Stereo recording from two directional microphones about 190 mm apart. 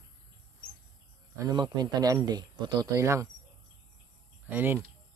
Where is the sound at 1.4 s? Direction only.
20° right (ahead or behind).